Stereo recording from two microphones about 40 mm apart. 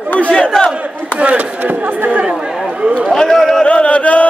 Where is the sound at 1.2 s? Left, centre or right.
Right.